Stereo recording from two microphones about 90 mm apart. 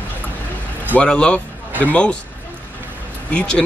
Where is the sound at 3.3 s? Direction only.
10° left (ahead or behind).